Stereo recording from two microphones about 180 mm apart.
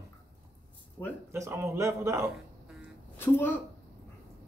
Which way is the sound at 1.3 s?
15° right (ahead or behind).